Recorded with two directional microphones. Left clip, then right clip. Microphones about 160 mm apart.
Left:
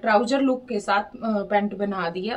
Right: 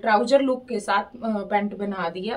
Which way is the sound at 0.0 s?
5° left (ahead or behind).